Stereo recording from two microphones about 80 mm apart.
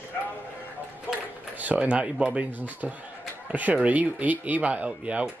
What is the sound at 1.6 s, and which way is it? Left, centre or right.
Speech, centre.